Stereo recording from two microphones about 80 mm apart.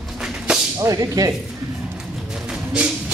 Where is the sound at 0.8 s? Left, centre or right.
Right.